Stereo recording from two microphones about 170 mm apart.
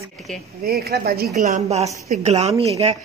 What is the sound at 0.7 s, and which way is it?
A woman's voice, 65° right (ahead or behind).